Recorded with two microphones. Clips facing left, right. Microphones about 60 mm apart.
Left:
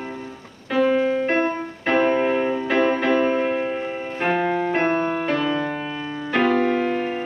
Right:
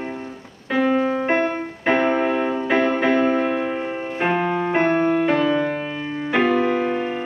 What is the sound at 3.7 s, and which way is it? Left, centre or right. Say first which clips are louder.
Music: right 1 dB; right.